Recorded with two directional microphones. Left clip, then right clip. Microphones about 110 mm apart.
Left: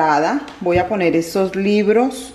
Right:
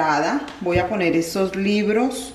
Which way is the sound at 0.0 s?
20° left (ahead or behind).